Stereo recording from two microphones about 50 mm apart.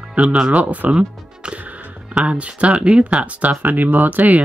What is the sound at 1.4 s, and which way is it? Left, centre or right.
Speech, centre.